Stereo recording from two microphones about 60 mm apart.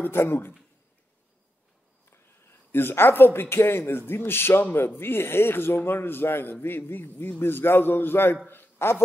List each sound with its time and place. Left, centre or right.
0.0 s a man's voice: left
2.7 s a man's voice: left